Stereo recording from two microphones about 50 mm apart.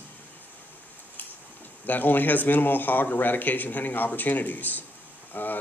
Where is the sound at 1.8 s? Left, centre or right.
Left.